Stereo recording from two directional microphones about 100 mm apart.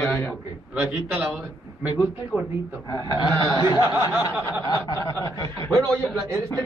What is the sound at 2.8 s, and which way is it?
Chuckle, 40° left (ahead or behind).